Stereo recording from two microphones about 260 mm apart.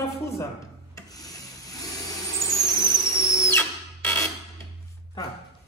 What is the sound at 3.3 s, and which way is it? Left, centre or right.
Drill, centre.